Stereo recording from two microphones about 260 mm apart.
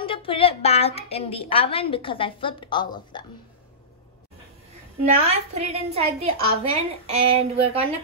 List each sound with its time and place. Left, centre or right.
0.0 s a woman's voice: centre
5.2 s a woman's voice: right